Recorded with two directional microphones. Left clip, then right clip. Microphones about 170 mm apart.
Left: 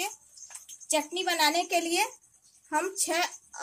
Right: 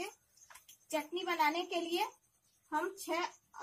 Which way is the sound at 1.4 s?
40° left (ahead or behind).